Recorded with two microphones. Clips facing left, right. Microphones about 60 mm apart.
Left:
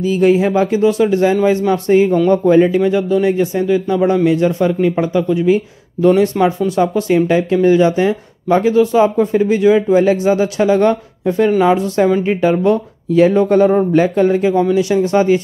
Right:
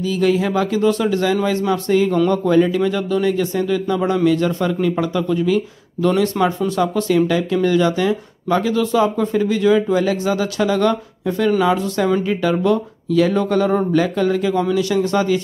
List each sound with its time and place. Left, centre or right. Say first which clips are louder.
0.0 s speech: left 5 dB; left
14.5 s speech: left 4 dB; centre